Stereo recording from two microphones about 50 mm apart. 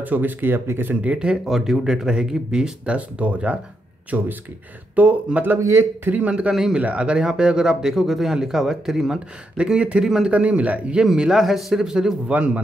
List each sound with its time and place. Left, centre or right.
0.0 s speech: right
1.0 s speech: centre
2.8 s speech: right
5.6 s a man's voice: right
6.0 s speech: right
6.5 s speech: centre
6.8 s speech: right
7.1 s speech: centre
9.6 s speech: centre
11.1 s speech: centre
12.3 s speech: right